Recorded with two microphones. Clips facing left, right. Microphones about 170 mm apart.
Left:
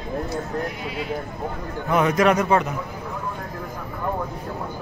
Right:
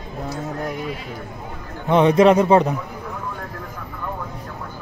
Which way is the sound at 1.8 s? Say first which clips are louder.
Right 5 dB; 30° right (ahead or behind).